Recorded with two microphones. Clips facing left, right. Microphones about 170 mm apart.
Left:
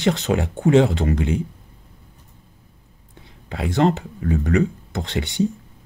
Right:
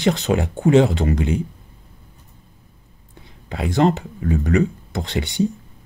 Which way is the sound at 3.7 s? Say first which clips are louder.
Right 1 dB; 35° right (ahead or behind).